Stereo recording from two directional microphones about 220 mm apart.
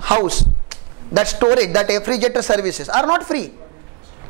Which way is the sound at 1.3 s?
15° right (ahead or behind).